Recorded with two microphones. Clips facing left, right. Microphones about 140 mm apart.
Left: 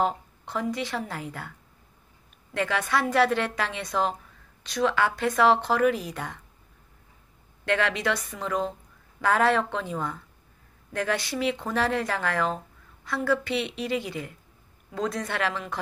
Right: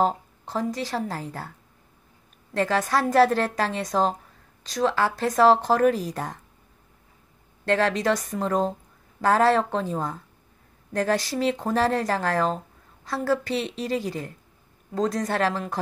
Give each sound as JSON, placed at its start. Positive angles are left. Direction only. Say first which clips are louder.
{"t": 0.0, "sound": "speech", "louder": "right 3 dB", "side_deg": -35}
{"t": 2.5, "sound": "speech", "louder": "right 3 dB", "side_deg": -35}
{"t": 7.6, "sound": "speech", "louder": "right 4 dB", "side_deg": -35}